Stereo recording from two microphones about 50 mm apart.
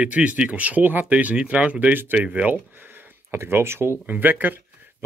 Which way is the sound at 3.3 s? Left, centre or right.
Right.